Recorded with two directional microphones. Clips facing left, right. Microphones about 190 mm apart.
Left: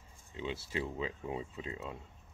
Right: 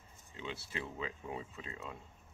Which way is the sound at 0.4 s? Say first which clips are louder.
Left 5 dB; 25° left (ahead or behind).